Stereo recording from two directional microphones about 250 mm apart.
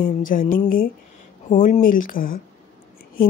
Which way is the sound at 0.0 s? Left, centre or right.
Left.